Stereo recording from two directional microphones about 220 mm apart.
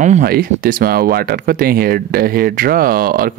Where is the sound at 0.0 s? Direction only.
40° right (ahead or behind).